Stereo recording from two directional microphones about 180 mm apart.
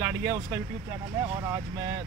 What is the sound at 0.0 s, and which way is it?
Speech, 15° right (ahead or behind).